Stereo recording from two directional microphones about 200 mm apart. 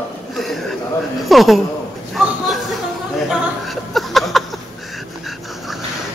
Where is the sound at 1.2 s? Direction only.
Centre (ahead or behind).